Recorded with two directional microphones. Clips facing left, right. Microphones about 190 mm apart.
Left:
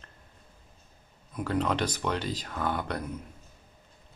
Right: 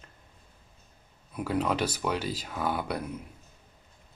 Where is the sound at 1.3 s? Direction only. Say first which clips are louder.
Even; 10° right (ahead or behind).